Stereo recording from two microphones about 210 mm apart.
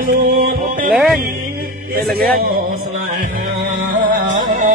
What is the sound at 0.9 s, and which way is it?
Music, centre (ahead or behind).